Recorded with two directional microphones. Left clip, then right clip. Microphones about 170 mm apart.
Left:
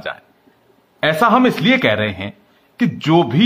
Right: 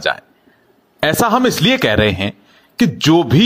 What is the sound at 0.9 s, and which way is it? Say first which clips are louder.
A man's voice: left 1 dB; 35° right (ahead or behind).